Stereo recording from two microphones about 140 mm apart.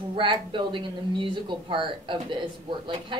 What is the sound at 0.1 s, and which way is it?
Speech, 35° right (ahead or behind).